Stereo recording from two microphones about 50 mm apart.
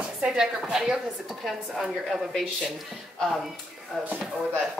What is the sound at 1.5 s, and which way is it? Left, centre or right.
Speech, centre.